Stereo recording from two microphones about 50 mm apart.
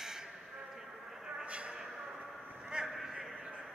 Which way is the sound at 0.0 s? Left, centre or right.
Centre.